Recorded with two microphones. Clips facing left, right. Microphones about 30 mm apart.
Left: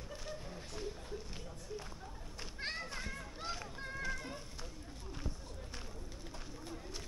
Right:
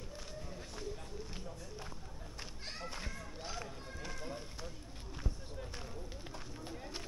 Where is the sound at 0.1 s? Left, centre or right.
Centre.